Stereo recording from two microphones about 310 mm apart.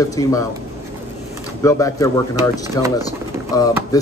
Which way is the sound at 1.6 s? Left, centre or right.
Centre.